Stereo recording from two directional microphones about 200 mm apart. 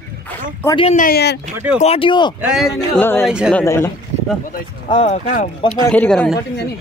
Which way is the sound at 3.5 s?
10° left (ahead or behind).